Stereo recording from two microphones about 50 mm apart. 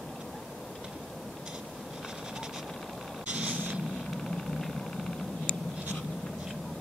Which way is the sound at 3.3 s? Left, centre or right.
Right.